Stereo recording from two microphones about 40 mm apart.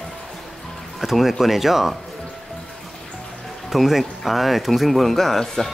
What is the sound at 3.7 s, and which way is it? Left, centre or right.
Speech, centre.